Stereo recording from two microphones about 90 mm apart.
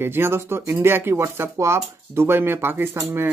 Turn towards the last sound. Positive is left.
turn(degrees=-25)  # may be behind; listen again after turning